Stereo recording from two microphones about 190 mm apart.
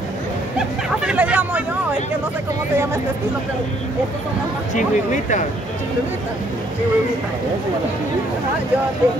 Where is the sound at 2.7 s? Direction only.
15° right (ahead or behind).